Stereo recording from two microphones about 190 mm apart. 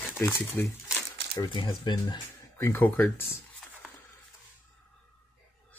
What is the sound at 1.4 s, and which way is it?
Speech, 25° left (ahead or behind).